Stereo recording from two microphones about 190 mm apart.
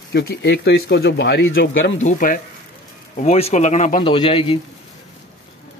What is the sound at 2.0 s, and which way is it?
Speech, 45° left (ahead or behind).